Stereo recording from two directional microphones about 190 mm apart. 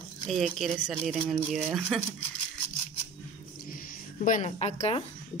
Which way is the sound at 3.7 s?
45° left (ahead or behind).